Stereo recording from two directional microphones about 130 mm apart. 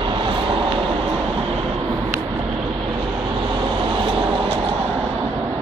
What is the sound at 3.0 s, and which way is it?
Vehicle, 40° right (ahead or behind).